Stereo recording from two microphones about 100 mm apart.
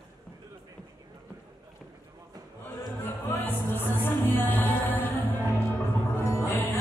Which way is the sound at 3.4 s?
20° left (ahead or behind).